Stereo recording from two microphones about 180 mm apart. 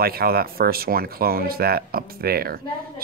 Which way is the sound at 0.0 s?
60° right (ahead or behind).